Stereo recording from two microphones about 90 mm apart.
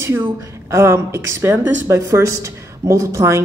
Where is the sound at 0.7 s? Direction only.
30° right (ahead or behind).